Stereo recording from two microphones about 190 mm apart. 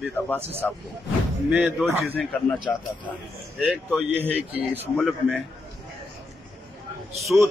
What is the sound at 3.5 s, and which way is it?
Speech, centre (ahead or behind).